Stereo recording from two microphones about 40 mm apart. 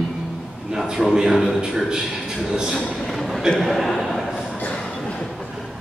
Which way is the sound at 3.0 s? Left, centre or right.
Centre.